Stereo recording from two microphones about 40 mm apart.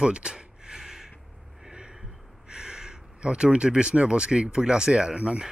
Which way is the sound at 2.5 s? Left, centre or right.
Centre.